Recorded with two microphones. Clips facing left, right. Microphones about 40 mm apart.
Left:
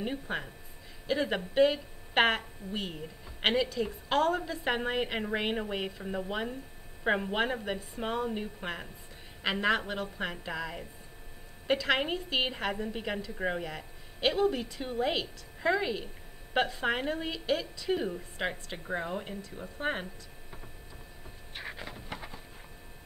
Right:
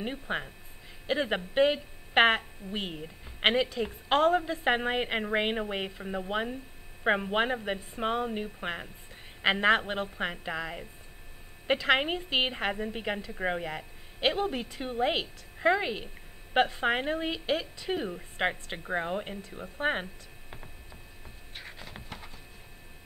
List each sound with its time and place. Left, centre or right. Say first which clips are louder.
0.0 s a woman's voice: right 1 dB; right
9.4 s a woman's voice: right 4 dB; right
10.4 s a woman's voice: right 2 dB; right
11.6 s a woman's voice: right 2 dB; right
13.7 s a woman's voice: right 3 dB; right
17.9 s speech: left 1 dB; centre
18.4 s a woman's voice: right 5 dB; right
21.6 s a sound: left 5 dB; centre